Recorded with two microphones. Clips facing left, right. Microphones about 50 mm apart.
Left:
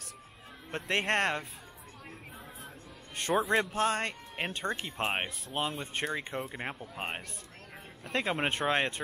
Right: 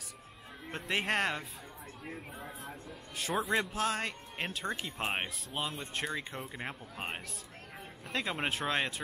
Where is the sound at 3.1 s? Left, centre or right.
Centre.